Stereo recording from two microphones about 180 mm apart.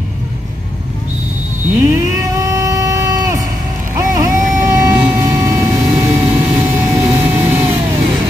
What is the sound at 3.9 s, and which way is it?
Vehicle, 20° right (ahead or behind).